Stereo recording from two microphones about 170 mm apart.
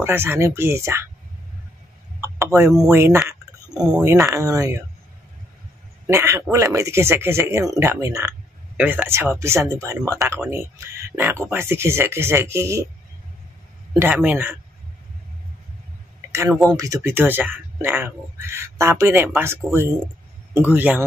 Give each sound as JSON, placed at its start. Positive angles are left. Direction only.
{"t": 0.0, "sound": "speech", "side_deg": -15}
{"t": 2.1, "sound": "a sound", "side_deg": -15}
{"t": 2.8, "sound": "speech", "side_deg": -15}
{"t": 6.0, "sound": "speech", "side_deg": -15}
{"t": 13.9, "sound": "speech", "side_deg": -10}
{"t": 16.3, "sound": "a sound", "side_deg": -15}
{"t": 16.7, "sound": "speech", "side_deg": -20}